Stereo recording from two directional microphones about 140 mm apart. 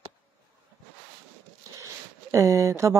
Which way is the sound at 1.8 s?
20° right (ahead or behind).